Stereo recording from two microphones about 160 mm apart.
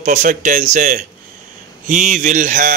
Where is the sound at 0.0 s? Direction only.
50° right (ahead or behind).